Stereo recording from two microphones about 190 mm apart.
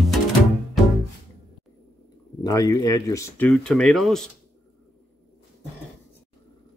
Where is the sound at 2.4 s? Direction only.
20° left (ahead or behind); by 4.2 s centre (ahead or behind).